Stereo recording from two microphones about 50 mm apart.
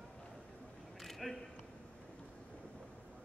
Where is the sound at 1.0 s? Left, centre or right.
Centre.